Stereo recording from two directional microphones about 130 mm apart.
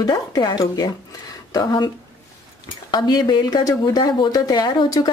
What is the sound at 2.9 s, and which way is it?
A woman's voice, 30° left (ahead or behind).